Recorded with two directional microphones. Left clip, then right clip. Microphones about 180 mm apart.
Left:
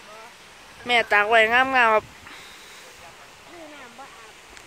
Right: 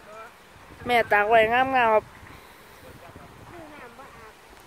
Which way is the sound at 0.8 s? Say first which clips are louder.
Left 1 dB; 15° right (ahead or behind).